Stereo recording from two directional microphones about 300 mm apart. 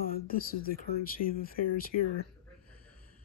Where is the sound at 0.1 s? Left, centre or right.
Left.